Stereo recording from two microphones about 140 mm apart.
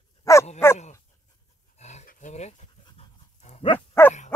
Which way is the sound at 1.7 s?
55° left (ahead or behind).